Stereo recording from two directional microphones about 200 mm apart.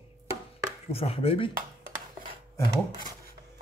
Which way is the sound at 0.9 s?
30° left (ahead or behind).